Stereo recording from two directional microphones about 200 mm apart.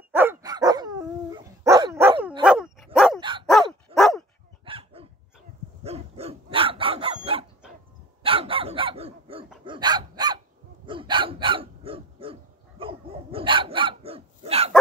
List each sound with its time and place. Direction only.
0.1 s dog: 10° right (ahead or behind)
2.4 s dog: 5° right (ahead or behind)
3.2 s dog: 25° right (ahead or behind)
3.9 s dog: centre (ahead or behind)
4.6 s dog: 25° right (ahead or behind)
7.6 s dog: 5° right (ahead or behind)
8.2 s dog: 25° right (ahead or behind)